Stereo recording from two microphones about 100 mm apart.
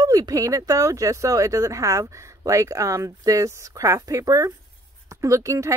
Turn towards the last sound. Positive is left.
turn(degrees=-30)  # may be behind; listen again after turning